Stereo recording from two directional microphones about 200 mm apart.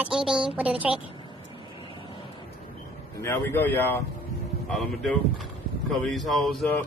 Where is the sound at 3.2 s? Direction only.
10° left (ahead or behind).